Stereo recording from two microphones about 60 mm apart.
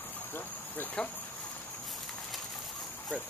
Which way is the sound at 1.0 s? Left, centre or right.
Centre.